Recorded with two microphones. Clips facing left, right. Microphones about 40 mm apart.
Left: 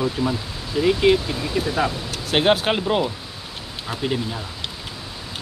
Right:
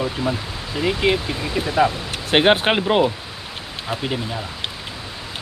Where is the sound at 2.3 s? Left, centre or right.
Right.